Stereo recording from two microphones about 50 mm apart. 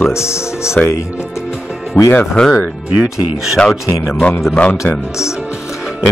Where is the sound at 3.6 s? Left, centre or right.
Left.